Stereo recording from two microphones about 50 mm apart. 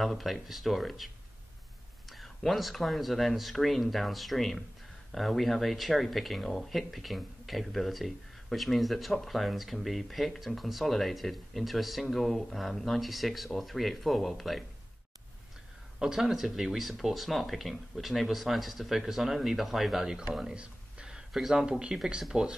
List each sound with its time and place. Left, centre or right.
0.0 s speech: centre
16.0 s speech: centre
20.4 s a sound: centre
21.3 s speech: centre
21.6 s speech: centre